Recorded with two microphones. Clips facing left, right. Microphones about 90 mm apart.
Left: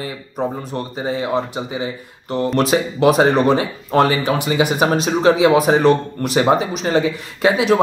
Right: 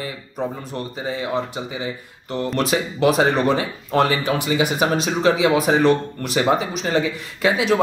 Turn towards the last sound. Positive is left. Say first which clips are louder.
# left 3 dB
turn(degrees=35)  # may be behind; listen again after turning